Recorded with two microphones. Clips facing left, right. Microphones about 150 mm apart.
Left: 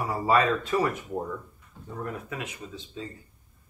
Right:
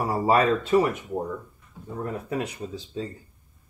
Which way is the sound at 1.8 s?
25° right (ahead or behind).